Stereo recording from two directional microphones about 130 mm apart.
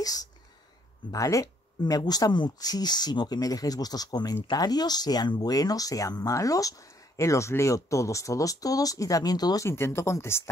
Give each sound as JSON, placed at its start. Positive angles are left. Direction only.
{"t": 1.1, "sound": "speech", "side_deg": 25}
{"t": 9.7, "sound": "speech", "side_deg": 20}